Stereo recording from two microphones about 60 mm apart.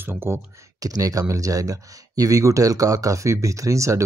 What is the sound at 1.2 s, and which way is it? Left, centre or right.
Speech, right.